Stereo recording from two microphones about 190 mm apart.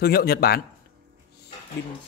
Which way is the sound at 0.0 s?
55° left (ahead or behind).